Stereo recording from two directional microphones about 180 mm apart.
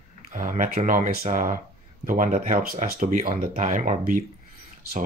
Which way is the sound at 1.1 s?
50° right (ahead or behind).